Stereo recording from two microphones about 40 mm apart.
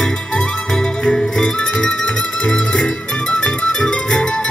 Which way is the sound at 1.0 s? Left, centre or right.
Centre.